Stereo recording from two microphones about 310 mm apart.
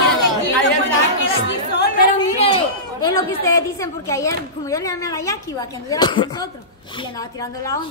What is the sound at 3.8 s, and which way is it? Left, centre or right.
Speech, centre.